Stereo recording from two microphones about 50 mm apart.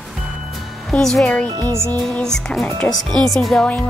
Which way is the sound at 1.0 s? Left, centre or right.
Centre.